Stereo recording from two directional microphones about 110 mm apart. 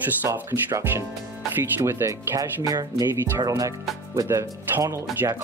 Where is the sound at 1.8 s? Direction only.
25° right (ahead or behind).